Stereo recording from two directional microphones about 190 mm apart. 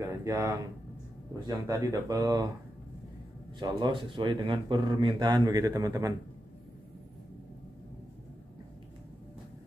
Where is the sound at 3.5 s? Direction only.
20° right (ahead or behind).